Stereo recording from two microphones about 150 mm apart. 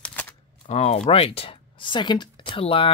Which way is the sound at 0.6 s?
45° left (ahead or behind).